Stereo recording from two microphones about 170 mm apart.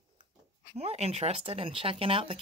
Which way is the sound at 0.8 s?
40° right (ahead or behind).